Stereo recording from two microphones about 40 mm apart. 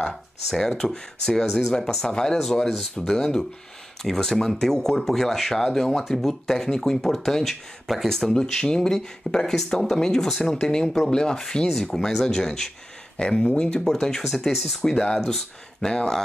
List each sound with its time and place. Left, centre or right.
0.1 s speech: centre
14.2 s speech: centre
14.8 s speech: centre